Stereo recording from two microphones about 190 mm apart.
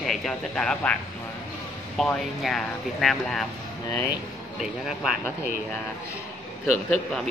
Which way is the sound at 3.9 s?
15° left (ahead or behind).